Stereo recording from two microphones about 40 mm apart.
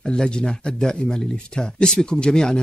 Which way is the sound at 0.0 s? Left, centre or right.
Left.